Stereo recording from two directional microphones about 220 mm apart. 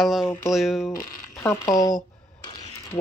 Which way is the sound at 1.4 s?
15° left (ahead or behind).